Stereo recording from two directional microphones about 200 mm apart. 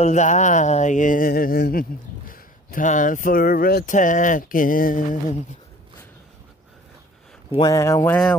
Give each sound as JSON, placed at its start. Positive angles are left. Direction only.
{"t": 0.0, "sound": "speech", "side_deg": 35}
{"t": 7.5, "sound": "speech", "side_deg": 20}